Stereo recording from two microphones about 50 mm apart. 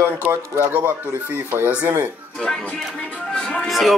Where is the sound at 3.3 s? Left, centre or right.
Left.